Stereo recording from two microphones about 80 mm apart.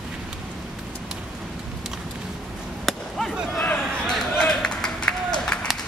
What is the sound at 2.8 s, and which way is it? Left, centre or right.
Chop, centre.